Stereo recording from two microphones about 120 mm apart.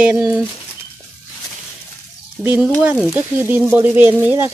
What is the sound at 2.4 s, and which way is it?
Speech, 10° right (ahead or behind).